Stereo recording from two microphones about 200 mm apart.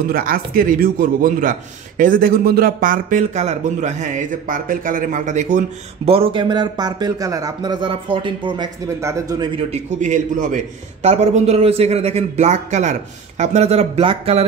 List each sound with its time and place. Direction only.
0.1 s a man's voice: 45° right (ahead or behind); by 9.5 s 15° right (ahead or behind)
9.7 s a man's voice: 35° right (ahead or behind)